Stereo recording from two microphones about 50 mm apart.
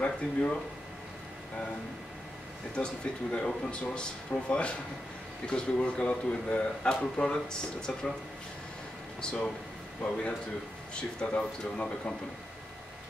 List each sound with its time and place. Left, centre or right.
0.0 s speech: left
2.7 s speech: centre
9.2 s speech: left
11.0 s speech: centre